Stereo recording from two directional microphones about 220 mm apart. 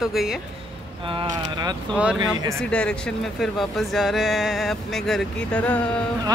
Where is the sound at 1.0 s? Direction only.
20° right (ahead or behind).